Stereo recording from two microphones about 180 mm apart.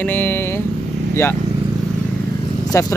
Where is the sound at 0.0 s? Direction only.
10° left (ahead or behind).